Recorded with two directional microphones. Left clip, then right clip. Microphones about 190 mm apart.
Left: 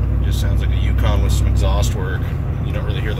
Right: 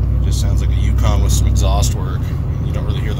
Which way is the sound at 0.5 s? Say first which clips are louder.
Even; 10° right (ahead or behind).